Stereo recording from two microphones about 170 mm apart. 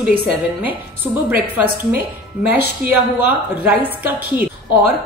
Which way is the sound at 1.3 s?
60° right (ahead or behind).